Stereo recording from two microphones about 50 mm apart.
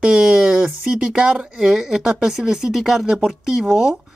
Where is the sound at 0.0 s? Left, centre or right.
Centre.